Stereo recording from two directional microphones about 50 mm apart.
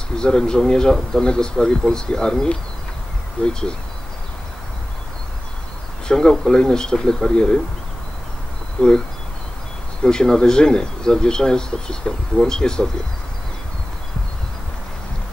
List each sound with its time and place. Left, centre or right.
0.2 s speech: centre
3.4 s speech: left
6.0 s speech: centre
8.8 s speech: left
10.0 s speech: centre